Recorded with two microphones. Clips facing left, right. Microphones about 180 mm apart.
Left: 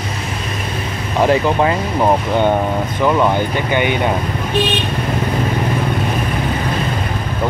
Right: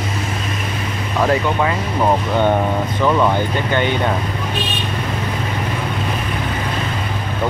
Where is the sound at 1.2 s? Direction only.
30° left (ahead or behind).